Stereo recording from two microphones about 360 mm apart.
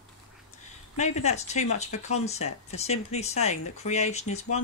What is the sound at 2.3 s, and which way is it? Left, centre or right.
Speech, centre.